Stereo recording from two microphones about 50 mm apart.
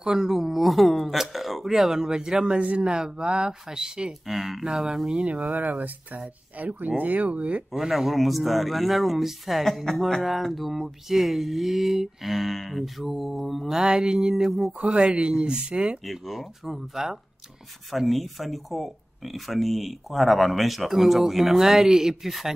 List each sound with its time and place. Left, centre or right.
0.0 s speech: centre
4.3 s speech: centre
4.6 s speech: centre
5.2 s speech: right
7.7 s speech: centre
13.7 s speech: centre
14.8 s speech: right
16.1 s speech: centre